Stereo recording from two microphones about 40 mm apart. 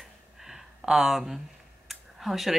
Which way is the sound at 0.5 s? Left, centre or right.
Centre.